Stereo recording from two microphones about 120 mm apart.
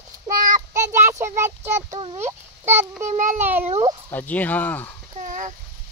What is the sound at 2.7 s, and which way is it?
Child singing, 20° right (ahead or behind).